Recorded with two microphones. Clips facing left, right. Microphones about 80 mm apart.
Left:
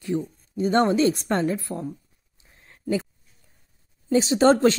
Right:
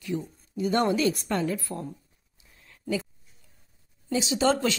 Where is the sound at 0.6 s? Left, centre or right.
Left.